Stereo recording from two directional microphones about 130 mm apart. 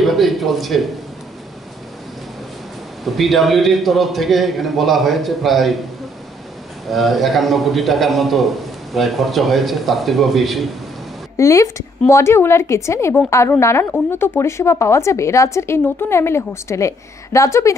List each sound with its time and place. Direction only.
0.0 s speech: centre (ahead or behind)
3.0 s a man's voice: centre (ahead or behind)
6.9 s a man's voice: centre (ahead or behind)
11.3 s a woman's voice: 20° left (ahead or behind)